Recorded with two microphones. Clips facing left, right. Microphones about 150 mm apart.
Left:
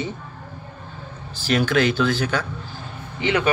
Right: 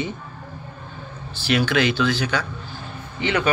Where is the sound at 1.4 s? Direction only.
45° left (ahead or behind).